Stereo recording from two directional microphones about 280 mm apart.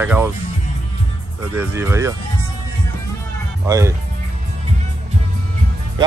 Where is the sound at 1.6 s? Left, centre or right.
Centre.